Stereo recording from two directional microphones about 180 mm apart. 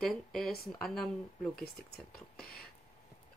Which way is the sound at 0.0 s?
Centre (ahead or behind).